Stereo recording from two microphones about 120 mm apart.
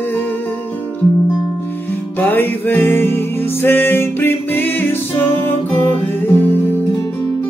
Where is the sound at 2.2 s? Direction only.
15° left (ahead or behind).